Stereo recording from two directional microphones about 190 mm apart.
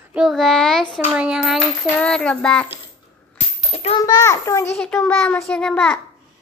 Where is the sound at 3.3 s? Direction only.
30° left (ahead or behind).